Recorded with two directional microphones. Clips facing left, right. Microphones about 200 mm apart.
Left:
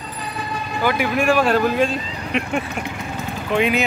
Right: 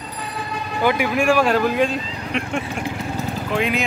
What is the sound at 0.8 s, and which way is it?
Speech, 15° right (ahead or behind).